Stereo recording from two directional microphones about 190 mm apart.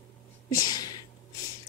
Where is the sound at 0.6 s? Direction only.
20° left (ahead or behind).